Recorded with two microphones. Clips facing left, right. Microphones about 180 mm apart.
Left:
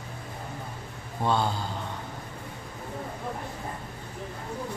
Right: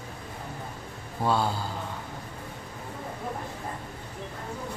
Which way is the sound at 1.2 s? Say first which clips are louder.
Even; 5° right (ahead or behind).